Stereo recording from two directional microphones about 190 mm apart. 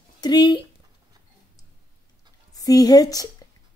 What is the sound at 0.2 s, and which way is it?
Speech, 20° left (ahead or behind).